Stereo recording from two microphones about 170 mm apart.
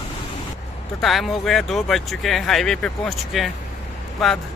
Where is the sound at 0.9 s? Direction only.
Centre (ahead or behind).